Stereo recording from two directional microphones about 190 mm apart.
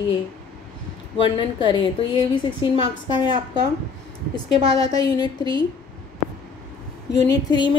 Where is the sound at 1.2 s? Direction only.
25° left (ahead or behind).